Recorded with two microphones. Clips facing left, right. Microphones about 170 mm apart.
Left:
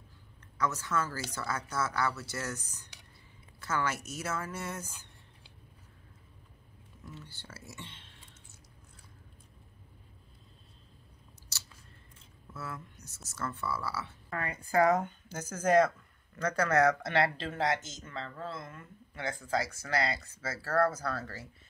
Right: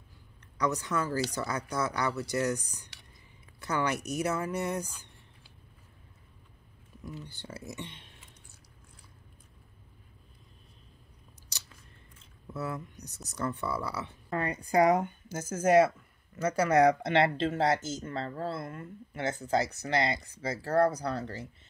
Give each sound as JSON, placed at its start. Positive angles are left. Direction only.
{"t": 0.6, "sound": "speech", "side_deg": -15}
{"t": 7.2, "sound": "speech", "side_deg": -15}
{"t": 11.5, "sound": "scissors", "side_deg": -15}
{"t": 12.5, "sound": "speech", "side_deg": -20}